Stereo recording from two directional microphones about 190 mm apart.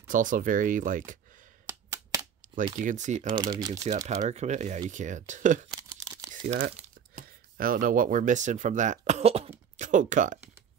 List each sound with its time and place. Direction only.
0.1 s speech: 45° right (ahead or behind)
1.7 s a sound: 15° right (ahead or behind)
2.8 s speech: 40° right (ahead or behind)
3.3 s speech: 25° right (ahead or behind)
3.9 s speech: 40° right (ahead or behind)
5.7 s tearing: 20° right (ahead or behind)
6.3 s speech: 45° right (ahead or behind)